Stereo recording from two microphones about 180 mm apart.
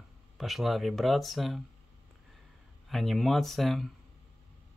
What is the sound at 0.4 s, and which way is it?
Speech, centre (ahead or behind).